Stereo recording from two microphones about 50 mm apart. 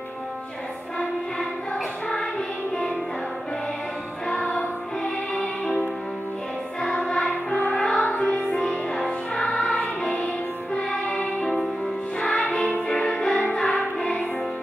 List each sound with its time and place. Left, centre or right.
4.3 s music: centre
11.4 s music: centre